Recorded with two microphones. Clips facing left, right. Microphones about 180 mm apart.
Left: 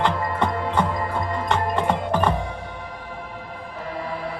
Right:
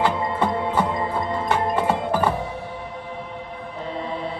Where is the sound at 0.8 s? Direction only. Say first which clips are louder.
Right 1 dB; 25° right (ahead or behind).